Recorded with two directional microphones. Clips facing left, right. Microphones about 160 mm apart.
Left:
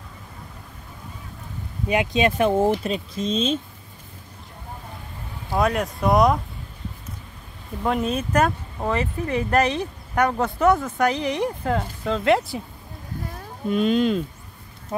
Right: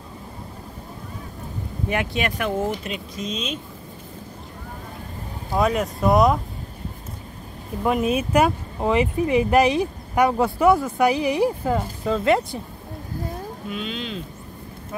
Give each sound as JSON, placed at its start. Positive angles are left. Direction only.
{"t": 1.9, "sound": "speech", "side_deg": 20}
{"t": 5.5, "sound": "speech", "side_deg": 0}
{"t": 7.8, "sound": "speech", "side_deg": -5}
{"t": 13.7, "sound": "speech", "side_deg": 45}